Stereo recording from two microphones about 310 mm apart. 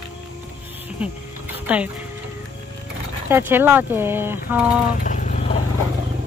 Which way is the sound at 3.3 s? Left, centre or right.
Centre.